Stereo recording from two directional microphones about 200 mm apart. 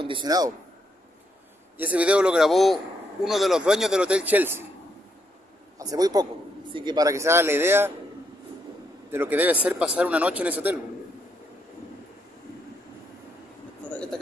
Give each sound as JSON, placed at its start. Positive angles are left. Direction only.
{"t": 0.0, "sound": "speech", "side_deg": -25}
{"t": 1.8, "sound": "a man's voice", "side_deg": -5}
{"t": 5.8, "sound": "a man's voice", "side_deg": -20}
{"t": 9.1, "sound": "a man's voice", "side_deg": -10}
{"t": 13.8, "sound": "speech", "side_deg": 5}